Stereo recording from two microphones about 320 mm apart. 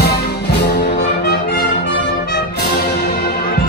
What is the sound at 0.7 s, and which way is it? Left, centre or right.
Music, left.